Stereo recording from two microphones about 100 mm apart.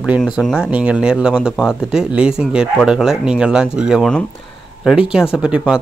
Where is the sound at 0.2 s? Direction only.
Centre (ahead or behind).